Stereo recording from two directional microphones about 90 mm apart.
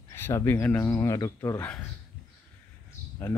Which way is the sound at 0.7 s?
30° left (ahead or behind).